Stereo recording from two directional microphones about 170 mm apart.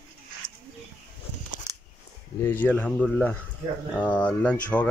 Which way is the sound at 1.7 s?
20° right (ahead or behind).